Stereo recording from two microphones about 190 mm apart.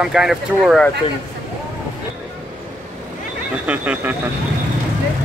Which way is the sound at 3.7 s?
5° right (ahead or behind).